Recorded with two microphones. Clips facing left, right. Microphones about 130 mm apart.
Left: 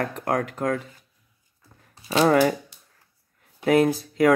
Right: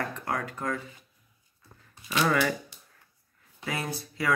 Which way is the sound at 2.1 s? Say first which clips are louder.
Left 7 dB; 35° left (ahead or behind).